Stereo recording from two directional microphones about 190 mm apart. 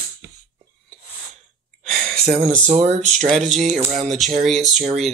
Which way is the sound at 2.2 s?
30° right (ahead or behind).